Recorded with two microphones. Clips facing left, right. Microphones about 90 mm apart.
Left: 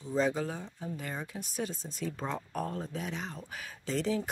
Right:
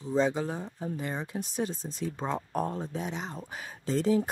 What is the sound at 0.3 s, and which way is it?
Speech, 30° right (ahead or behind).